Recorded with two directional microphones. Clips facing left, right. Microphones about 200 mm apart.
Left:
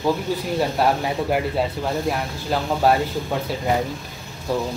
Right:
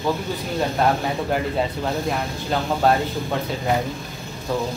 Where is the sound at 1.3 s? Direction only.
5° left (ahead or behind).